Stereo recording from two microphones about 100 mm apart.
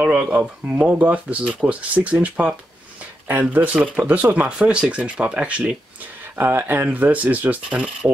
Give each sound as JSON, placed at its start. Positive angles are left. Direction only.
{"t": 0.0, "sound": "speech", "side_deg": -15}